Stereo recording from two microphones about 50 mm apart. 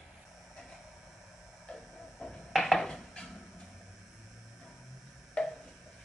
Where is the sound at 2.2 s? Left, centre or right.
Centre.